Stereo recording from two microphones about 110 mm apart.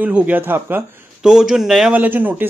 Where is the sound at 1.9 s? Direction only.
15° right (ahead or behind).